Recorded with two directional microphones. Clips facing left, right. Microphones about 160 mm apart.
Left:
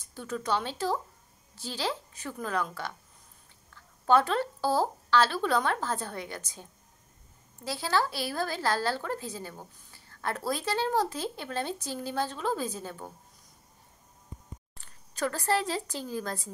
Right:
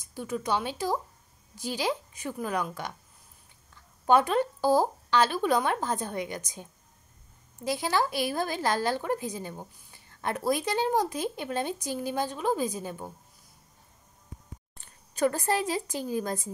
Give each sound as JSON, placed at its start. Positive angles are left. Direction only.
{"t": 0.0, "sound": "speech", "side_deg": -10}
{"t": 14.8, "sound": "speech", "side_deg": -20}